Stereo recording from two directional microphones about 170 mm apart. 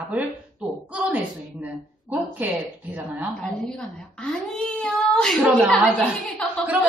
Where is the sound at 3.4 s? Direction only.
5° left (ahead or behind).